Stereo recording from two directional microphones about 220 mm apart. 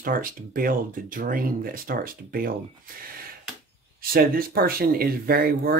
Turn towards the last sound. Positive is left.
turn(degrees=-40)  # may be behind; listen again after turning